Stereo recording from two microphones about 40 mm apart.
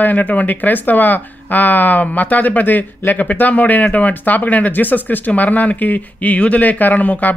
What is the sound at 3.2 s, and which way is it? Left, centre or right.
Speech, left.